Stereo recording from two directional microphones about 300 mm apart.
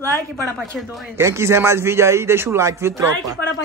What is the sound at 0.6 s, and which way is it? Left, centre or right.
Speech, centre.